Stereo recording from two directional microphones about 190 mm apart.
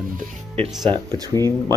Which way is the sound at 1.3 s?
15° left (ahead or behind).